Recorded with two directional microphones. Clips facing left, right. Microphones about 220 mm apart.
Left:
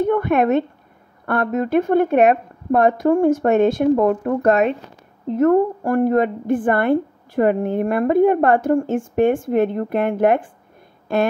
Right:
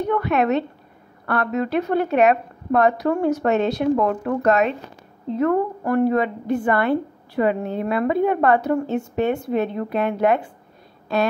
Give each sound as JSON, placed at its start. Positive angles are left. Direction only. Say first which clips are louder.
{"t": 0.0, "sound": "a woman's voice", "louder": "left 3 dB", "side_deg": 50}
{"t": 5.4, "sound": "a woman's voice", "louder": "left 5 dB", "side_deg": 45}